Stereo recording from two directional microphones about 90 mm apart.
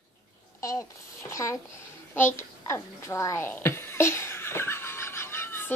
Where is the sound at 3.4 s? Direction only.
25° left (ahead or behind).